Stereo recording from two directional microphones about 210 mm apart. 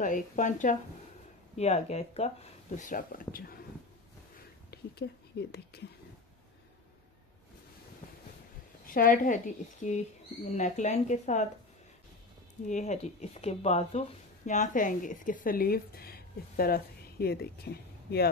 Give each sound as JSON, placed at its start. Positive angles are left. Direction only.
{"t": 0.0, "sound": "speech", "side_deg": 35}
{"t": 4.6, "sound": "speech", "side_deg": 50}
{"t": 8.8, "sound": "a woman's voice", "side_deg": 40}
{"t": 12.6, "sound": "speech", "side_deg": 35}